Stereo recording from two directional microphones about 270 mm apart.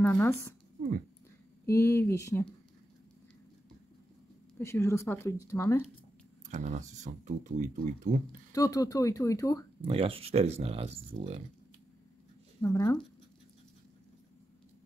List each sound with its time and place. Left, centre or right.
0.0 s speech: centre
1.7 s speech: centre
4.6 s speech: centre
6.5 s speech: right
8.5 s speech: centre
9.8 s speech: centre
12.6 s speech: centre